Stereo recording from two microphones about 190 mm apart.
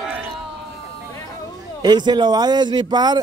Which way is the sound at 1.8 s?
20° right (ahead or behind).